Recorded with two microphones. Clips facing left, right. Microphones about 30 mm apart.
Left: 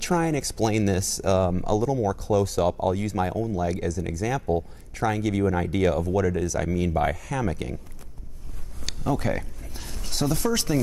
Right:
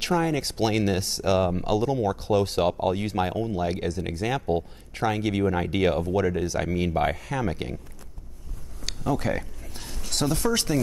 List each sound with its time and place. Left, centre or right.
0.0 s speech: right
1.3 s speech: right
1.6 s speech: right
5.0 s speech: right
8.8 s a sound: centre
10.3 s speech: centre